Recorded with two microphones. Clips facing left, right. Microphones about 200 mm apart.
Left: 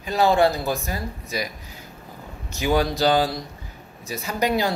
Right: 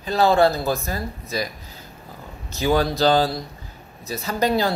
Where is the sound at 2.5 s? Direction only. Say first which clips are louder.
Right 1 dB; 15° left (ahead or behind).